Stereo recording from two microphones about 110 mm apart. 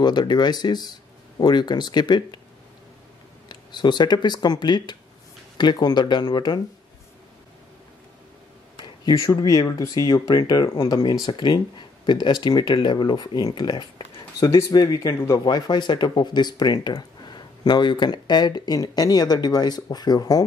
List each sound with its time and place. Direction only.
0.0 s speech: 40° left (ahead or behind)
3.4 s speech: 40° left (ahead or behind)
8.7 s a sound: 45° left (ahead or behind)
9.1 s speech: 30° left (ahead or behind)